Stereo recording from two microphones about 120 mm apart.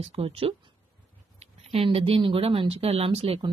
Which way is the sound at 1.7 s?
50° right (ahead or behind).